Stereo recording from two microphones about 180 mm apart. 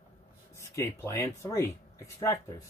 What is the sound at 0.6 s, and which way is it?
Speech, 15° left (ahead or behind).